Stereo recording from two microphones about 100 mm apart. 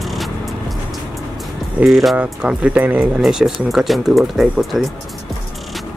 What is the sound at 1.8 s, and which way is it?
Speech, centre (ahead or behind).